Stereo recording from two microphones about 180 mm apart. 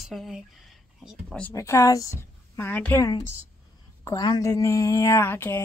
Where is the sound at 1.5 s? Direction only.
15° left (ahead or behind).